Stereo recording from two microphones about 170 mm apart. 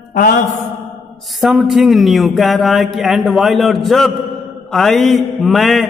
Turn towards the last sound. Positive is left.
turn(degrees=0)  # may be behind; listen again after turning